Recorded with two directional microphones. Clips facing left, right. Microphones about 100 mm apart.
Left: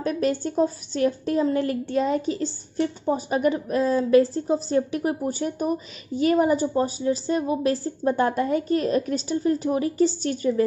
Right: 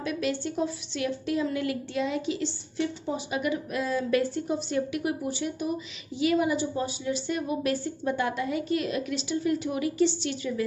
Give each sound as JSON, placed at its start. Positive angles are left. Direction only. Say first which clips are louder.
{"t": 0.0, "sound": "a woman's voice", "louder": "left 5 dB", "side_deg": 40}